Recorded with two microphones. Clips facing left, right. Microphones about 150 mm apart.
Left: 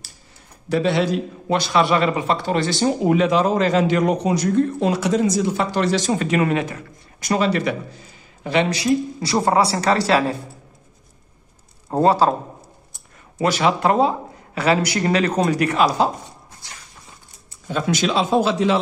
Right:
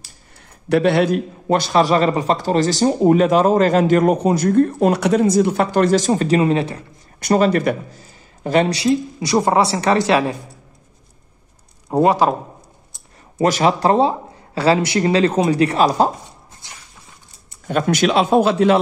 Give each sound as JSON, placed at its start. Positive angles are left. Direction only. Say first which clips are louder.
{"t": 0.7, "sound": "a man's voice", "louder": "right 4 dB", "side_deg": -60}
{"t": 7.2, "sound": "a man's voice", "louder": "right 4 dB", "side_deg": -45}
{"t": 9.2, "sound": "speech", "louder": "right 4 dB", "side_deg": -20}
{"t": 11.9, "sound": "speech", "louder": "right 1 dB", "side_deg": -15}
{"t": 13.4, "sound": "speech", "louder": "right 3 dB", "side_deg": -40}
{"t": 17.6, "sound": "a man's voice", "louder": "right 4 dB", "side_deg": -60}